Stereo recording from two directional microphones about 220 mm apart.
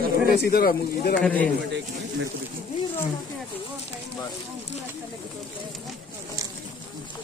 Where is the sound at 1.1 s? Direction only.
5° left (ahead or behind).